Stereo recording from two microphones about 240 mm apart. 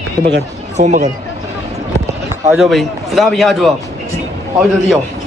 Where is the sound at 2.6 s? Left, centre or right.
Centre.